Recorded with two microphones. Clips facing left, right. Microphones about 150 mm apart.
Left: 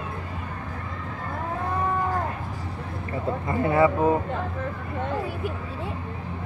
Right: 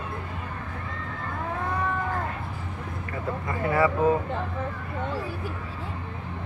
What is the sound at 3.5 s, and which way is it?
Speech, 25° left (ahead or behind).